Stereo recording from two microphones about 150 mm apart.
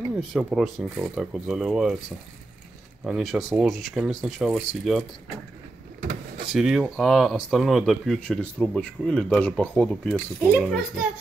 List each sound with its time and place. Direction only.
0.3 s speech: 5° right (ahead or behind)
3.0 s speech: centre (ahead or behind)
6.5 s speech: centre (ahead or behind)